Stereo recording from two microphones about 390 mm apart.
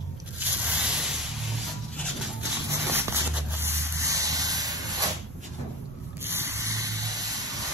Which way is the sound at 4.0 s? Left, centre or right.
Centre.